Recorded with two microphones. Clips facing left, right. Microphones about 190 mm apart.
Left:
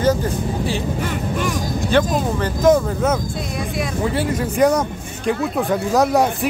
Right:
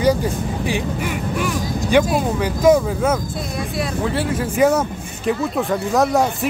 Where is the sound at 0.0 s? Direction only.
10° right (ahead or behind).